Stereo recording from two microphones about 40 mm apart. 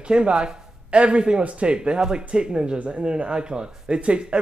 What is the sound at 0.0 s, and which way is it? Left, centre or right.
Speech, right.